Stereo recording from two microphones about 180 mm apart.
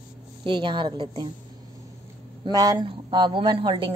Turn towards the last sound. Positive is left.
turn(degrees=-25)  # may be behind; listen again after turning